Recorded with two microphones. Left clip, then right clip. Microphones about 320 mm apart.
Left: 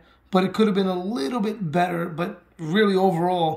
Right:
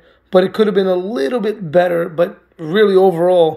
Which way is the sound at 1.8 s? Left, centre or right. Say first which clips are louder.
Right 10 dB; centre.